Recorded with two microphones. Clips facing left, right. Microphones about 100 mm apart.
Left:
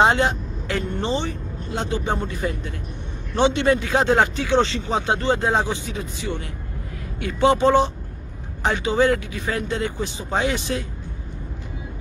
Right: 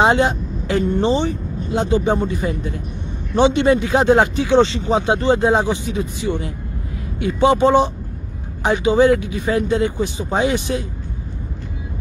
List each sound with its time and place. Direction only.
0.0 s speech: 15° right (ahead or behind)